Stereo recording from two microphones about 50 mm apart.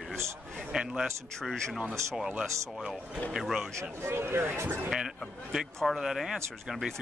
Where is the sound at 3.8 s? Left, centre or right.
Right.